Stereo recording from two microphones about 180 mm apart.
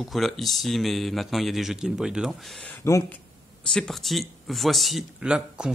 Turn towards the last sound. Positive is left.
turn(degrees=-5)  # may be behind; listen again after turning